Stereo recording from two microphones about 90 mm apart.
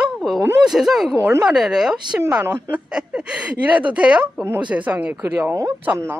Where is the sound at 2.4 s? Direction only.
25° right (ahead or behind).